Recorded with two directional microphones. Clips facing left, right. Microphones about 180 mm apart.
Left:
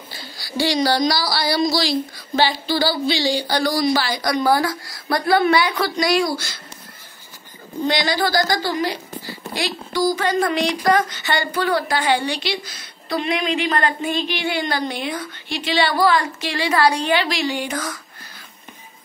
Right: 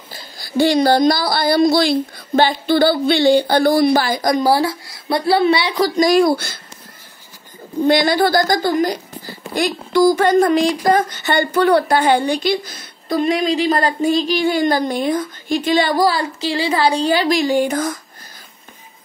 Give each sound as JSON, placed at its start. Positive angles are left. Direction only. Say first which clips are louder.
{"t": 0.1, "sound": "a woman's voice", "louder": "right 7 dB", "side_deg": -50}
{"t": 4.5, "sound": "speech", "louder": "right 3 dB", "side_deg": -25}
{"t": 5.9, "sound": "a woman's voice", "louder": "right 7 dB", "side_deg": -45}
{"t": 7.8, "sound": "a woman's voice", "louder": "right 6 dB", "side_deg": -55}
{"t": 11.9, "sound": "a woman's voice", "louder": "right 5 dB", "side_deg": -50}